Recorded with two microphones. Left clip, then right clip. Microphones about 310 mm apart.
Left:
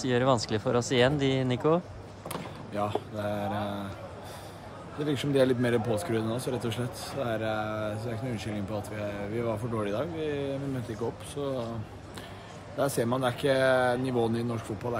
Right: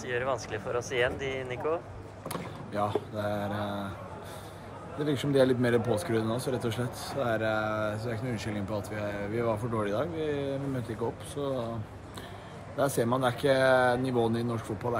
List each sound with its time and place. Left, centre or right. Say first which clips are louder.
0.0 s speech: left 5 dB; centre
2.2 s speech: even; centre
5.0 s speech: even; centre
12.7 s speech: right 1 dB; centre